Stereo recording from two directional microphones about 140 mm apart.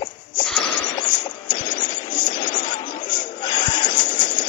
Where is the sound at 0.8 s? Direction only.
35° left (ahead or behind).